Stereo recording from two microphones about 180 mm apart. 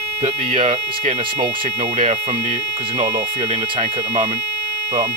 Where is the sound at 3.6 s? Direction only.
30° right (ahead or behind).